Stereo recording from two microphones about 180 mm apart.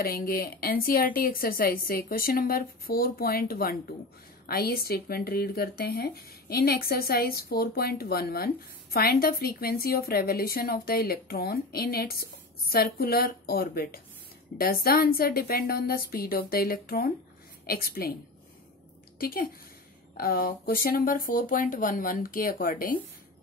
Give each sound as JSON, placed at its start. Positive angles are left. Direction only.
{"t": 0.0, "sound": "a woman's voice", "side_deg": 55}
{"t": 19.1, "sound": "a woman's voice", "side_deg": 55}